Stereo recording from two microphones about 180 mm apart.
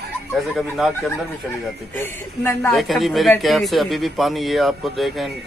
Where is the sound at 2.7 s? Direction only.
Centre (ahead or behind).